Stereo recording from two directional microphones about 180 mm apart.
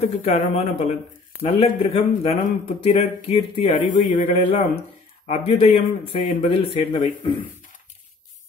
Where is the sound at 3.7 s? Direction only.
45° left (ahead or behind).